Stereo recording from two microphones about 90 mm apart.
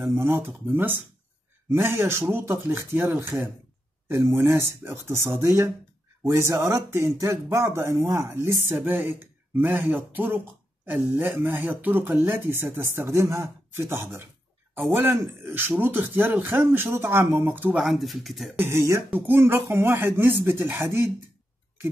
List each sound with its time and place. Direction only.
0.2 s speech: 25° right (ahead or behind)
17.7 s speech: centre (ahead or behind)
18.6 s speech: 30° right (ahead or behind)